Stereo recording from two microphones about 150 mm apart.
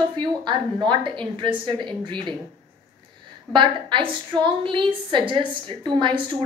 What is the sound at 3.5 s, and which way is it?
Speech, 30° right (ahead or behind).